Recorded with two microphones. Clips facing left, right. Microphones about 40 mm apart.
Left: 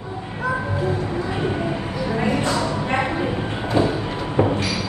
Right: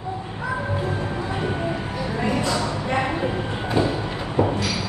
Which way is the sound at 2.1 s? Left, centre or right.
Left.